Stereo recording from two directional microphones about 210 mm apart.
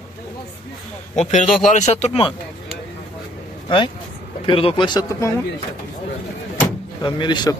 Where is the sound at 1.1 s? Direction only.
35° left (ahead or behind).